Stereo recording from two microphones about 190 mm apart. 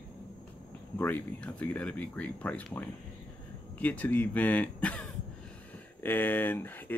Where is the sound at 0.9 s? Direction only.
10° left (ahead or behind).